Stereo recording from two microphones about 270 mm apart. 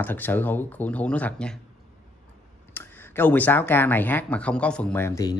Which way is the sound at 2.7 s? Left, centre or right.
Centre.